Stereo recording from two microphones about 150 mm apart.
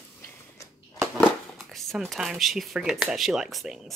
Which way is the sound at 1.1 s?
Centre (ahead or behind).